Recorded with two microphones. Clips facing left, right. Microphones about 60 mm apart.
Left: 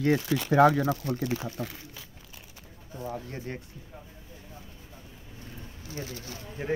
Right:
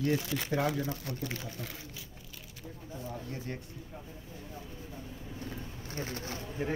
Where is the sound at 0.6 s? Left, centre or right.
Left.